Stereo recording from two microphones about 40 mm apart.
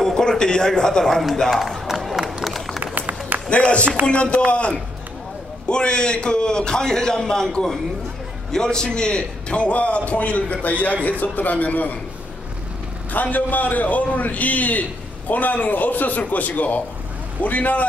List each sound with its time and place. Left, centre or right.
0.0 s a man's voice: centre
1.9 s crowd: centre
2.4 s run: centre
2.8 s run: right
3.4 s a man's voice: left
13.1 s a man's voice: left